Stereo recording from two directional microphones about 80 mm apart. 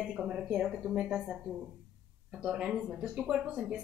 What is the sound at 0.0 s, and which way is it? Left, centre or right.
A woman's voice, centre.